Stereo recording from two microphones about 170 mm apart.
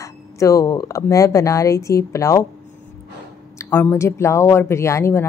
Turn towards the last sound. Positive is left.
turn(degrees=15)  # may be behind; listen again after turning